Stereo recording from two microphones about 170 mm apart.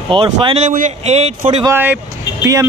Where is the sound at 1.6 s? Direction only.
10° right (ahead or behind).